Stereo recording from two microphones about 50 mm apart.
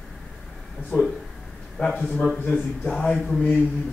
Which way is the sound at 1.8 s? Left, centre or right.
Left.